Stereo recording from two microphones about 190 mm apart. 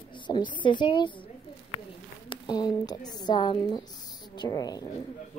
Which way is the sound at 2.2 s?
20° left (ahead or behind).